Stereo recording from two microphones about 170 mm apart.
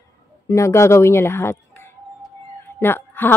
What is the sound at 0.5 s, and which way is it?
A woman's voice, 15° left (ahead or behind).